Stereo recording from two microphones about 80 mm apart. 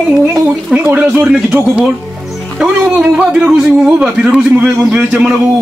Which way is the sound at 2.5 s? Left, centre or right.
Centre.